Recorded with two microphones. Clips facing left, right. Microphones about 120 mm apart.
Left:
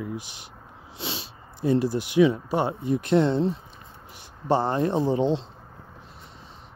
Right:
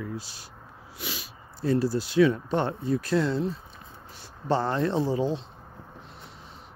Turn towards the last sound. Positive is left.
turn(degrees=20)  # may be behind; listen again after turning